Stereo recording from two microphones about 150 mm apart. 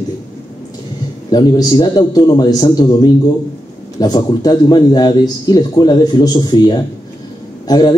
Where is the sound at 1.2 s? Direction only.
25° left (ahead or behind).